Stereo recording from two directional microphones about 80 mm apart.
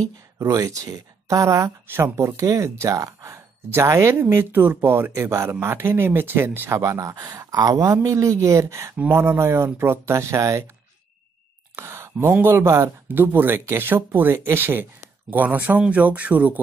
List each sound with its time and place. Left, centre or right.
0.4 s speech: right
1.9 s speech: right
6.8 s speech: right
7.2 s speech: right
11.7 s speech: right
13.2 s speech: right